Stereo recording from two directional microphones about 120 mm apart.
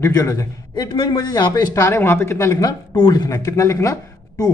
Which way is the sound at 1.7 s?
20° left (ahead or behind).